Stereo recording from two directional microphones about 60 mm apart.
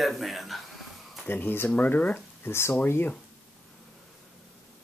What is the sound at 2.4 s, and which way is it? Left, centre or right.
Speech, left.